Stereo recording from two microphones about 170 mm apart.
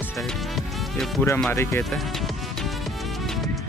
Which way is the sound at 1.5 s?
15° left (ahead or behind).